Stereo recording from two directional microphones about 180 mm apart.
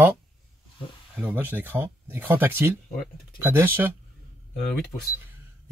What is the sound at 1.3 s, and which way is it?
A man's voice, 10° right (ahead or behind).